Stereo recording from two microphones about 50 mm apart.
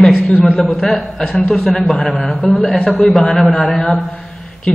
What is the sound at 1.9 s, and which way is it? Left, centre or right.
Speech, left.